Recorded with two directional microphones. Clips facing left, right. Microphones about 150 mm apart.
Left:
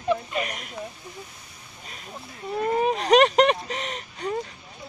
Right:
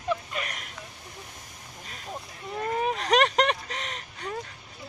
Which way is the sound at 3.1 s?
10° left (ahead or behind).